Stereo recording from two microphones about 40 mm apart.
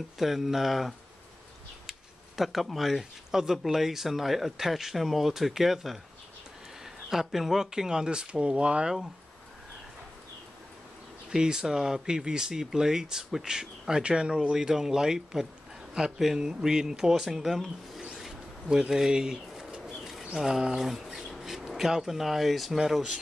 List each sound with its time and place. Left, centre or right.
0.2 s speech: centre; by 8.9 s right
11.3 s speech: centre
16.4 s speech: centre
18.1 s a sound: centre
19.3 s bird: centre
20.3 s speech: centre